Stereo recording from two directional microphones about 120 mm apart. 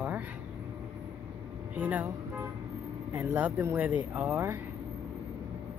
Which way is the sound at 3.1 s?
15° right (ahead or behind).